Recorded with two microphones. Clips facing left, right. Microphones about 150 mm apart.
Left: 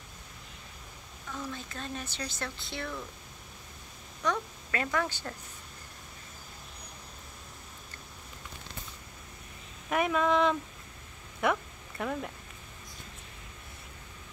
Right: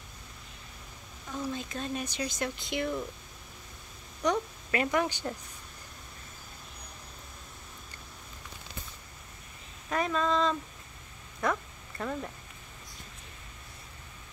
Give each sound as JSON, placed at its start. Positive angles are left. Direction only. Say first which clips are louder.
{"t": 1.4, "sound": "speech", "louder": "right 5 dB", "side_deg": -15}
{"t": 4.2, "sound": "a woman's voice", "louder": "right 3 dB", "side_deg": -20}
{"t": 9.8, "sound": "speech", "louder": "left 2 dB", "side_deg": 10}
{"t": 12.0, "sound": "speech", "louder": "left 1 dB", "side_deg": 0}